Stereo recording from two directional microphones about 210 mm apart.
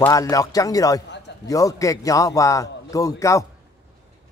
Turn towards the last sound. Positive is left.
turn(degrees=15)  # may be behind; listen again after turning